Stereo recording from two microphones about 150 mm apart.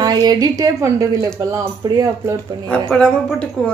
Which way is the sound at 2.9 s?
5° left (ahead or behind).